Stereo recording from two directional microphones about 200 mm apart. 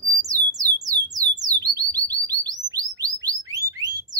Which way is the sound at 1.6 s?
20° right (ahead or behind).